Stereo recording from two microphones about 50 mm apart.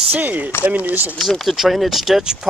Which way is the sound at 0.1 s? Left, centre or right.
Right.